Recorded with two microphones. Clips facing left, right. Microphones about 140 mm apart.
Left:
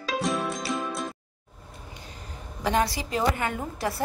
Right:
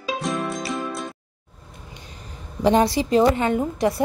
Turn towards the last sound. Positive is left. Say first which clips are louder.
# right 9 dB
turn(degrees=-20)  # may be behind; listen again after turning